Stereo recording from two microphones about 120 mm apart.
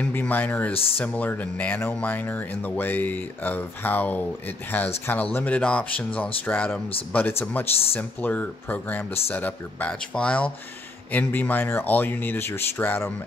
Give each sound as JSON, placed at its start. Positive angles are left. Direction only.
{"t": 0.0, "sound": "speech", "side_deg": 15}